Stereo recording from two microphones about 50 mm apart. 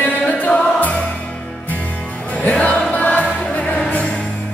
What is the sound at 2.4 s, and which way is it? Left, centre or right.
Music, left.